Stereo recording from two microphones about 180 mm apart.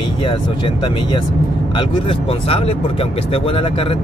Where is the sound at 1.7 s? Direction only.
30° left (ahead or behind).